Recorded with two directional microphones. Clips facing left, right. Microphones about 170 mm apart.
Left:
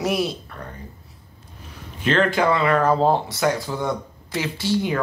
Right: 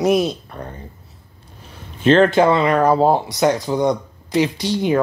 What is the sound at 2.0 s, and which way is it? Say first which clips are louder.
Speech: right 6 dB; 25° right (ahead or behind).